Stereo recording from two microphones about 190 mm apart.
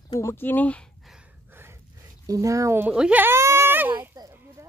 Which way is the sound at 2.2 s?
15° right (ahead or behind).